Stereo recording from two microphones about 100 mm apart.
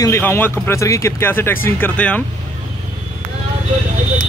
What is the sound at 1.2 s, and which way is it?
Speech, 20° left (ahead or behind).